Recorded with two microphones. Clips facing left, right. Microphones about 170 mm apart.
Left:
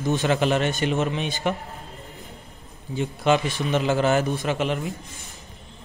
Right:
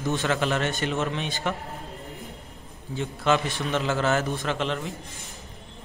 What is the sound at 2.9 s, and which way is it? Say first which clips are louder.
Speech: left 3 dB; 15° left (ahead or behind).